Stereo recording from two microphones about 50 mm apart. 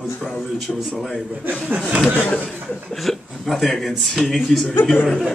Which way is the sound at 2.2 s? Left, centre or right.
Left.